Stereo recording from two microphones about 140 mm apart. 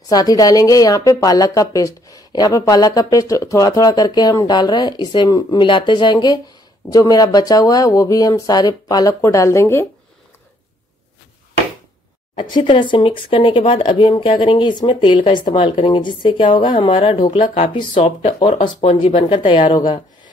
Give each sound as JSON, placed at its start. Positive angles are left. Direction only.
{"t": 0.1, "sound": "a woman's voice", "side_deg": 25}
{"t": 12.4, "sound": "speech", "side_deg": 35}